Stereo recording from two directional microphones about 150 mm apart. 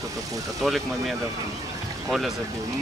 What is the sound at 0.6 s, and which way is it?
Speech, centre (ahead or behind).